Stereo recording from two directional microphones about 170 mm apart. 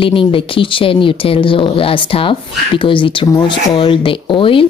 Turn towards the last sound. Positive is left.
turn(degrees=30)  # may be behind; listen again after turning